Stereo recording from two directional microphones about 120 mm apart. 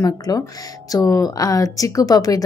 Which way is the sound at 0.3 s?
30° left (ahead or behind).